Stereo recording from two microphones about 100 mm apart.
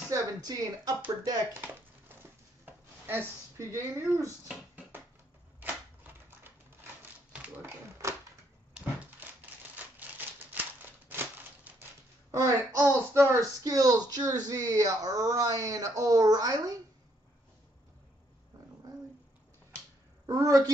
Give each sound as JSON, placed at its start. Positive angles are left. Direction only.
{"t": 0.1, "sound": "speech", "side_deg": -40}
{"t": 2.6, "sound": "speech", "side_deg": -20}
{"t": 7.0, "sound": "typewriter", "side_deg": -15}
{"t": 8.0, "sound": "a sound", "side_deg": -30}
{"t": 9.2, "sound": "typewriter", "side_deg": -20}
{"t": 12.3, "sound": "speech", "side_deg": -30}
{"t": 20.2, "sound": "speech", "side_deg": -35}